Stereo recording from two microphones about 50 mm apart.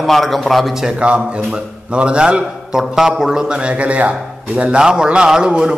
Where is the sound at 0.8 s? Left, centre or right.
Centre.